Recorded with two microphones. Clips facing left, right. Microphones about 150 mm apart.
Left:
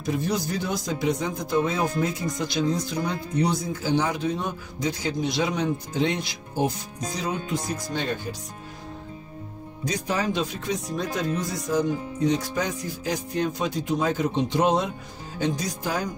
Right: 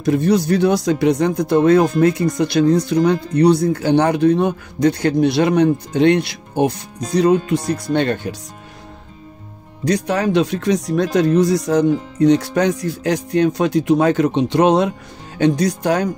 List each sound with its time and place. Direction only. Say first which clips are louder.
0.0 s speech: right 11 dB; 70° right (ahead or behind)
9.8 s speech: right 9 dB; 70° right (ahead or behind)